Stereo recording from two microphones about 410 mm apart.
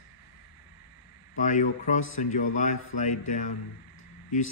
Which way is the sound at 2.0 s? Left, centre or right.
Left.